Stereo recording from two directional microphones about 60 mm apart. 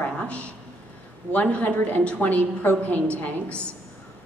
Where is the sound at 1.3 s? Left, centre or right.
Left.